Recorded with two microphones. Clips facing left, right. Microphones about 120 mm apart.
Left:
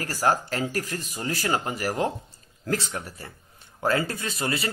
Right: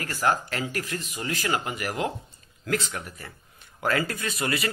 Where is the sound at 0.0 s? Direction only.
35° left (ahead or behind).